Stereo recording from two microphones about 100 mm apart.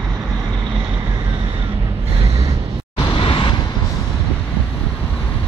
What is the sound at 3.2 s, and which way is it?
Vehicle, 65° left (ahead or behind).